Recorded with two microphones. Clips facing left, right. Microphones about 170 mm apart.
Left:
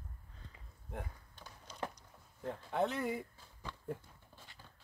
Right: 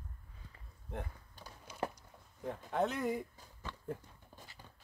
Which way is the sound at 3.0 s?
10° left (ahead or behind).